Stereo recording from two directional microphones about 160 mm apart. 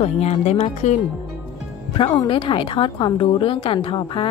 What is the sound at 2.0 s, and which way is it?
A woman's voice, 30° left (ahead or behind).